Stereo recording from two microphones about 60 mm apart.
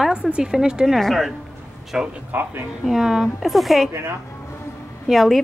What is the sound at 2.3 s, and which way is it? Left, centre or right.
Speech, right.